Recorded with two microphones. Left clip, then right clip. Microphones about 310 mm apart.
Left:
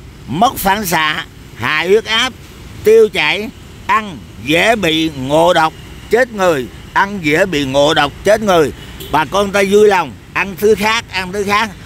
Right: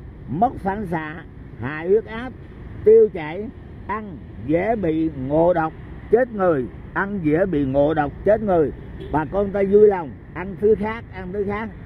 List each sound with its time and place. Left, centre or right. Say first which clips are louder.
0.3 s speech: left 9 dB; left